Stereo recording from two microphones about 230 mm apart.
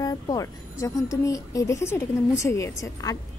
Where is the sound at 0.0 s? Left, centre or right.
Centre.